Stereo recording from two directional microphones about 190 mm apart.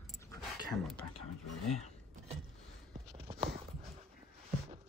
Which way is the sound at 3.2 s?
30° right (ahead or behind).